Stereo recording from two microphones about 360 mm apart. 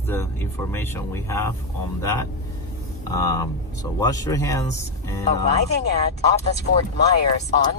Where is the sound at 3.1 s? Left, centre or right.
Centre.